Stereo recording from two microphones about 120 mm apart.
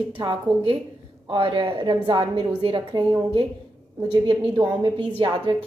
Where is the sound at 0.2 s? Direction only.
45° right (ahead or behind).